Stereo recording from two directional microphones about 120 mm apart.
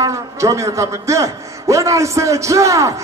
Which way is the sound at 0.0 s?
25° right (ahead or behind).